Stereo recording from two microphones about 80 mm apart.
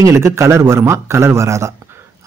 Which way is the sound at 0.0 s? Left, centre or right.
Right.